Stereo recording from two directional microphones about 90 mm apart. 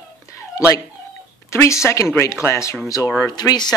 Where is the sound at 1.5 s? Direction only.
30° left (ahead or behind); by 3.7 s 50° left (ahead or behind).